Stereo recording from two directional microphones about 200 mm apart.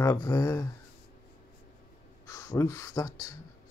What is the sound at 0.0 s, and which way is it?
Speech, 15° left (ahead or behind).